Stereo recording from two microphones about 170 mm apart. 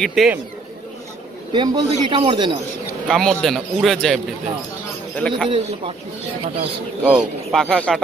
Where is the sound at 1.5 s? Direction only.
25° right (ahead or behind).